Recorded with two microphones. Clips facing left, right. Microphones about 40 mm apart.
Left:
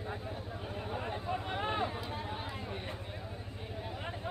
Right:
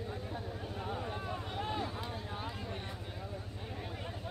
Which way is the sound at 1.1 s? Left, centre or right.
Left.